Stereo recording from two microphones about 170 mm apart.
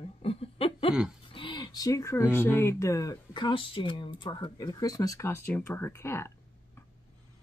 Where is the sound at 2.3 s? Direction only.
15° left (ahead or behind).